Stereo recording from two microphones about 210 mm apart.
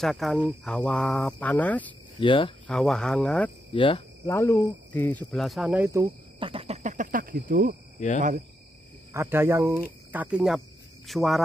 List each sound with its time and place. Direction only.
0.0 s speech: centre (ahead or behind)
2.1 s speech: 25° left (ahead or behind)
2.7 s speech: centre (ahead or behind)
3.7 s speech: 25° left (ahead or behind)
4.3 s speech: 10° left (ahead or behind); by 6.0 s 10° right (ahead or behind)
6.4 s speech: 25° right (ahead or behind)
9.1 s speech: 10° right (ahead or behind)